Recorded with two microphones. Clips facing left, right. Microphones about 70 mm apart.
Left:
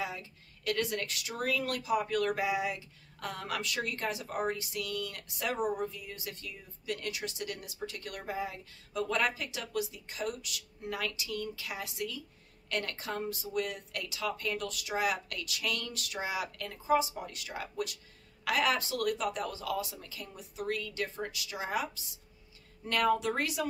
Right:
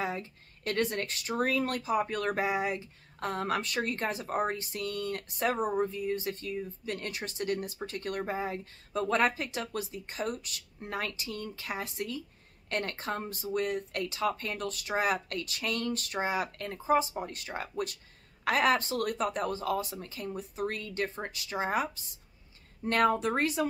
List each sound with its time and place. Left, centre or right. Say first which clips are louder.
0.0 s speech: right 4 dB; right